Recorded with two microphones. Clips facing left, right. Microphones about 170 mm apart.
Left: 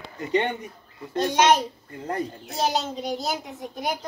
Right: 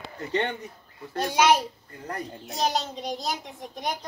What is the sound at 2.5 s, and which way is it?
Speech, centre (ahead or behind).